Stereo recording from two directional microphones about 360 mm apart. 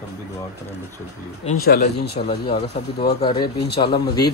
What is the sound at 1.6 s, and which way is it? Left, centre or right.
Speech, left.